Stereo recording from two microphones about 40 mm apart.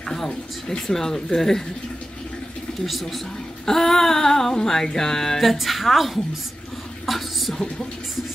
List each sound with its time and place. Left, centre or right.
0.3 s speech: centre
0.8 s music: centre
2.9 s a woman's voice: centre
3.6 s music: centre
5.4 s a woman's voice: centre
7.1 s a sound: centre